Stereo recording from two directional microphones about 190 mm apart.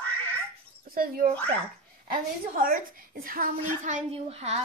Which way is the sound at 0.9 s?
50° right (ahead or behind).